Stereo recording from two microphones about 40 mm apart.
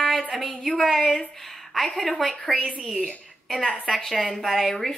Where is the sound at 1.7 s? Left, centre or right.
Centre.